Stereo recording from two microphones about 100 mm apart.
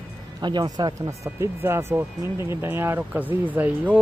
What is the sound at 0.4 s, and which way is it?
Speech, 45° right (ahead or behind).